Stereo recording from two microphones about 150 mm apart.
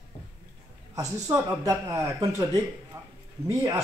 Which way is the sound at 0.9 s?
20° right (ahead or behind).